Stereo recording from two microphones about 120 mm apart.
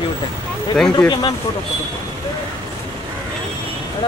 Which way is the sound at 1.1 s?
35° left (ahead or behind).